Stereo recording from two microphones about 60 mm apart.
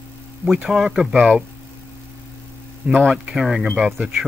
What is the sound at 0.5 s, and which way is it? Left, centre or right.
Speech, centre.